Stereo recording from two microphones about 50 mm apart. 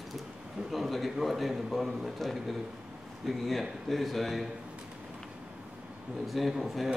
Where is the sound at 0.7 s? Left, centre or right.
Centre.